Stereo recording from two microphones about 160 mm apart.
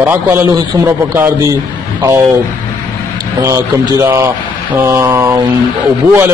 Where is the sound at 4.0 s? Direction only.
15° right (ahead or behind).